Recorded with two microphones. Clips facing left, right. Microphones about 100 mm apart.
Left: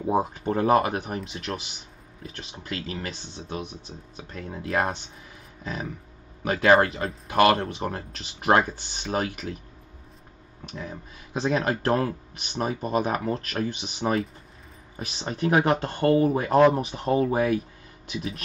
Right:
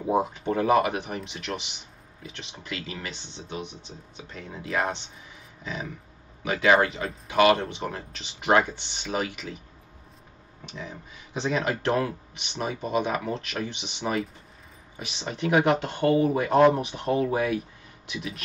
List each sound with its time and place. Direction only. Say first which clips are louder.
0.1 s speech: even; 40° left (ahead or behind)
10.6 s speech: left 2 dB; 45° left (ahead or behind)